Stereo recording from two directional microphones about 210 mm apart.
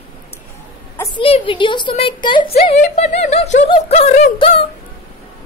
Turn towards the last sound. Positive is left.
turn(degrees=30)  # may be behind; listen again after turning